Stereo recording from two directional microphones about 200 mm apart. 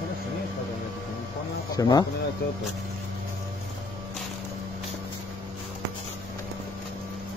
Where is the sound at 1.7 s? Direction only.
20° left (ahead or behind).